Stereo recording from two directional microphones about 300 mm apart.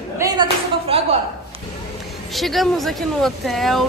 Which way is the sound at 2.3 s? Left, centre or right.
Centre.